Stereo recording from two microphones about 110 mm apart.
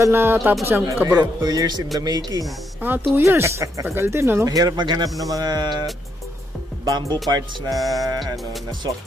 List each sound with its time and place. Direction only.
0.0 s speech: 20° right (ahead or behind)
1.4 s speech: 35° right (ahead or behind)
2.8 s speech: 15° right (ahead or behind)
4.5 s speech: 35° right (ahead or behind)
6.8 s speech: 40° right (ahead or behind)
7.7 s music: centre (ahead or behind)